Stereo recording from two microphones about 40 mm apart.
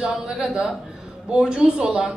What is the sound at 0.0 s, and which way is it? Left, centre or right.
A woman's voice, centre.